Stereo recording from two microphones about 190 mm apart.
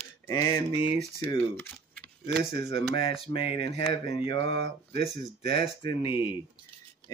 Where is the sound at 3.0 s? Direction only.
30° left (ahead or behind).